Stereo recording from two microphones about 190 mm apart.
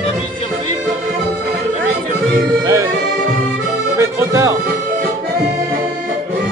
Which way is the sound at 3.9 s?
15° right (ahead or behind).